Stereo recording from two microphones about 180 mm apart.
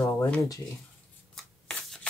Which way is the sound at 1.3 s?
Centre (ahead or behind).